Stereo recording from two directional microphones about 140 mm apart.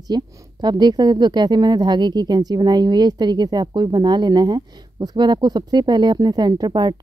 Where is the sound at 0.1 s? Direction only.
30° right (ahead or behind).